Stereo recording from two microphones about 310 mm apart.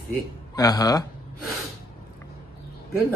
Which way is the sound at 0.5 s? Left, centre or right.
Centre.